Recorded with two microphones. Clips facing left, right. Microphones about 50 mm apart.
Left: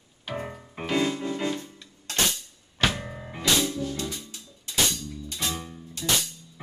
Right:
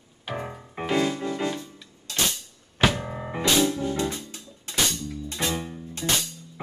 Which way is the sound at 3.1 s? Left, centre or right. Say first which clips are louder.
Right 2 dB; right.